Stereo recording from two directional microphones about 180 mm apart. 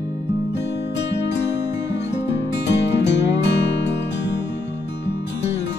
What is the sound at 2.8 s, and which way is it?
Music, 75° left (ahead or behind).